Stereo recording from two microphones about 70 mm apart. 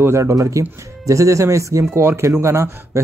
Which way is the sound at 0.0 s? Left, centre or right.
Right.